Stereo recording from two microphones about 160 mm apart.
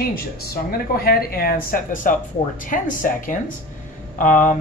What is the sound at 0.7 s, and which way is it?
Speech, 70° left (ahead or behind).